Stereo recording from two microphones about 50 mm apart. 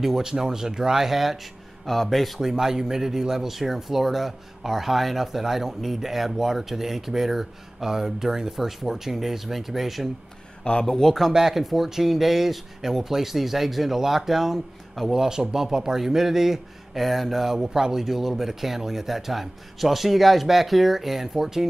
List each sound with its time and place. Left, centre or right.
0.0 s speech: centre
10.6 s speech: centre
11.0 s speech: centre